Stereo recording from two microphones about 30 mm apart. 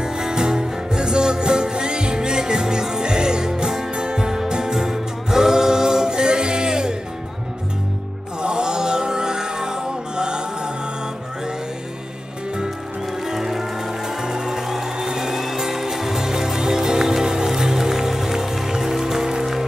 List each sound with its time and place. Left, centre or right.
0.0 s music: right
3.9 s music: right
8.4 s music: right
13.2 s music: centre